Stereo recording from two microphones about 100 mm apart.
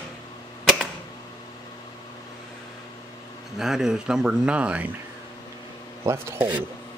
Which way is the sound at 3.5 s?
5° right (ahead or behind).